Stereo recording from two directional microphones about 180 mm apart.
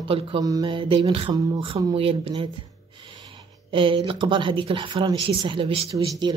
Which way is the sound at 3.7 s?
30° right (ahead or behind).